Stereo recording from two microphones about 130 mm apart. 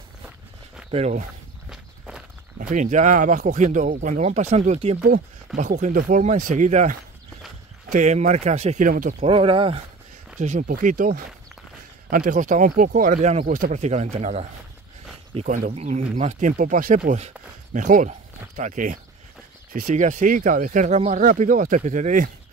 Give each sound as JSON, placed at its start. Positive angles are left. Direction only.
{"t": 0.9, "sound": "speech", "side_deg": -60}
{"t": 1.7, "sound": "walk", "side_deg": -5}
{"t": 2.7, "sound": "speech", "side_deg": -70}
{"t": 5.6, "sound": "speech", "side_deg": -80}
{"t": 9.2, "sound": "speech", "side_deg": -45}
{"t": 10.4, "sound": "speech", "side_deg": -70}
{"t": 13.5, "sound": "speech", "side_deg": -80}
{"t": 15.7, "sound": "speech", "side_deg": -65}